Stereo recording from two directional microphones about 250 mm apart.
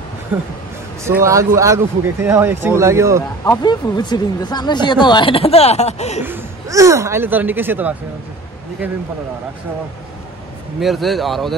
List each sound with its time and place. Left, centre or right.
1.0 s speech: centre
3.4 s speech: centre
6.2 s speech: centre
10.8 s speech: centre